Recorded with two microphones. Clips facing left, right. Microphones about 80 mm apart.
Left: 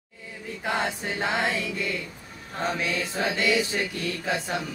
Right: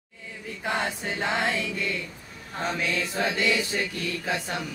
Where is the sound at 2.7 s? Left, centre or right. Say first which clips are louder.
Right 2 dB; centre.